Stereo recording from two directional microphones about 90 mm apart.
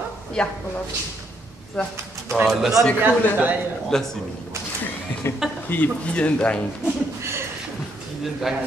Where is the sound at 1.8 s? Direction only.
10° left (ahead or behind).